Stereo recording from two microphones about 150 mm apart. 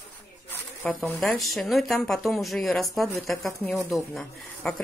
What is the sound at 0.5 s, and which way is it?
Speech, 10° left (ahead or behind).